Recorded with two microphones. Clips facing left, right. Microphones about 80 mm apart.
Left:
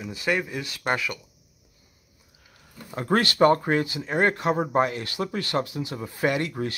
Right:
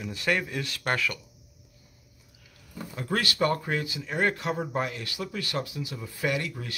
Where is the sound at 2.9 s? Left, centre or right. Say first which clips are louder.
Left 7 dB; left.